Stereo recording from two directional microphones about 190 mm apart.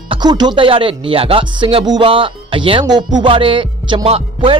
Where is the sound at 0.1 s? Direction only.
20° right (ahead or behind).